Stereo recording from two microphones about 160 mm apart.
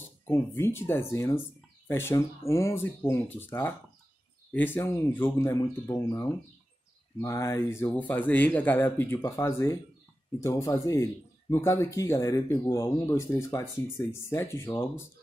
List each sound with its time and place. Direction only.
0.2 s speech: 15° left (ahead or behind)